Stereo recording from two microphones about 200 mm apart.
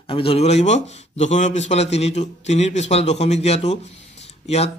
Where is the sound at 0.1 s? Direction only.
25° left (ahead or behind).